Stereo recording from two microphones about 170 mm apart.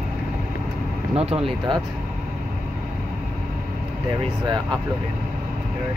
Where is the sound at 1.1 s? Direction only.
35° right (ahead or behind).